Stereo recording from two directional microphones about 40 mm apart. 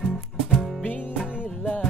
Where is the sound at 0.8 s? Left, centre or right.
Left.